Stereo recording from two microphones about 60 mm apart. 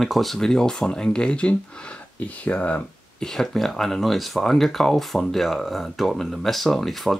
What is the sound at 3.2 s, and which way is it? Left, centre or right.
Speech, centre.